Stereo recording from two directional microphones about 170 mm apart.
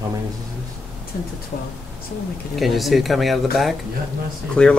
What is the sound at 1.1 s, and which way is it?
Speech, 60° left (ahead or behind).